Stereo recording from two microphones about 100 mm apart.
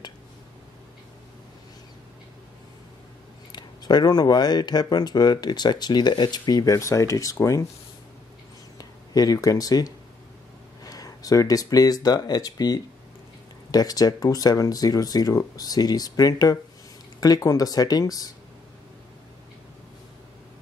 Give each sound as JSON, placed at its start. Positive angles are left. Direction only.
{"t": 3.5, "sound": "speech", "side_deg": 45}
{"t": 8.7, "sound": "speech", "side_deg": 40}